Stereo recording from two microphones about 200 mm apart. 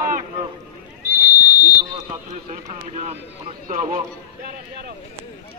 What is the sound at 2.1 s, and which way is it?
Speech, 40° right (ahead or behind).